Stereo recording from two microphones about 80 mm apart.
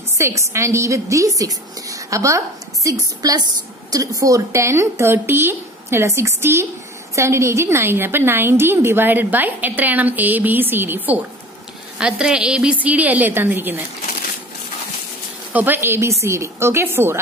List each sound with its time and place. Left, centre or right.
0.2 s a woman's voice: right
12.0 s a woman's voice: centre; by 13.7 s right
15.5 s a woman's voice: right